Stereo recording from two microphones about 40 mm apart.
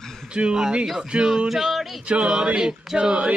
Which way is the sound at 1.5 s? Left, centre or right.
Centre.